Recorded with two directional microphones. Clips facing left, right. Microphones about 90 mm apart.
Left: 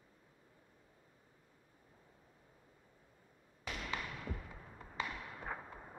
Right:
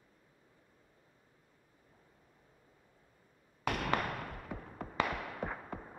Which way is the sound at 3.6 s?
60° right (ahead or behind).